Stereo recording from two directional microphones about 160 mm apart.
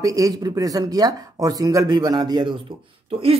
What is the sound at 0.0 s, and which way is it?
Speech, 20° right (ahead or behind).